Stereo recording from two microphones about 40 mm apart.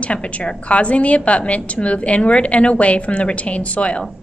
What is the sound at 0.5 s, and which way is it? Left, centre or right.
A woman's voice, left.